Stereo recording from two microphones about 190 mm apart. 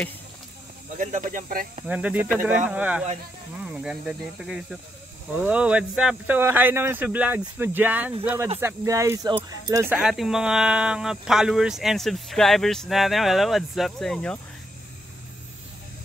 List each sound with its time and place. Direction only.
0.9 s speech: 40° right (ahead or behind)
1.9 s speech: 5° right (ahead or behind)